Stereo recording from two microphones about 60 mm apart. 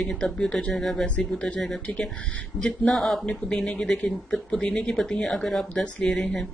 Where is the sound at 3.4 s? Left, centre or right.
Centre.